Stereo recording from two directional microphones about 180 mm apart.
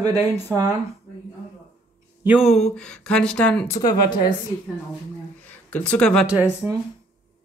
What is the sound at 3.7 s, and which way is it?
Speech, 25° left (ahead or behind).